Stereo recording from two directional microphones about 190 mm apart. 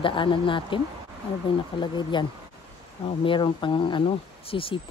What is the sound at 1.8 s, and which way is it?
Speech, 25° left (ahead or behind).